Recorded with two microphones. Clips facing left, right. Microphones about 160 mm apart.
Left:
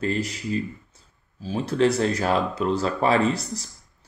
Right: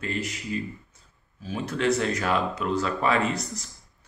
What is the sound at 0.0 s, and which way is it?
Speech, 35° left (ahead or behind).